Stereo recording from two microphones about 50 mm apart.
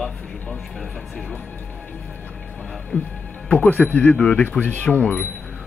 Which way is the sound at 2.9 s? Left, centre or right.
Left.